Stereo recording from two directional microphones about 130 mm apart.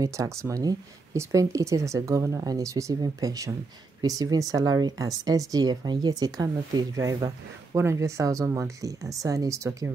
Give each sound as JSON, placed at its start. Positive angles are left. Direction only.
{"t": 0.0, "sound": "speech", "side_deg": -25}